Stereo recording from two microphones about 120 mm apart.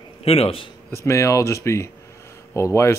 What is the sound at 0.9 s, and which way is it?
Speech, 25° left (ahead or behind).